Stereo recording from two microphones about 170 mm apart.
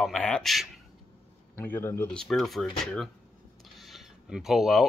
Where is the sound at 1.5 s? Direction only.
10° left (ahead or behind).